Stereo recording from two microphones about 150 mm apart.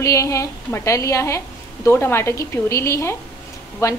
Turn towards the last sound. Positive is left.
turn(degrees=20)  # may be behind; listen again after turning